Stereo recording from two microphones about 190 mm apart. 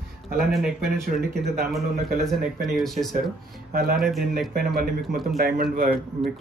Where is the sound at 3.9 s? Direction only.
Centre (ahead or behind).